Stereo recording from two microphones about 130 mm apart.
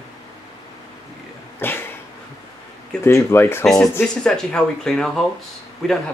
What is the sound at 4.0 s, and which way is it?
Speech, 5° left (ahead or behind).